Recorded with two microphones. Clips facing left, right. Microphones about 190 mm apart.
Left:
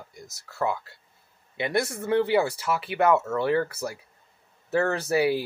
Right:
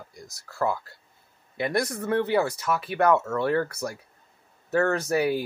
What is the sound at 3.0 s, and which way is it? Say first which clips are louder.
Speech: even; 5° left (ahead or behind).